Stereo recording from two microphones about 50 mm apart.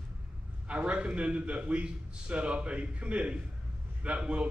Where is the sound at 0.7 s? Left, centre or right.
Right.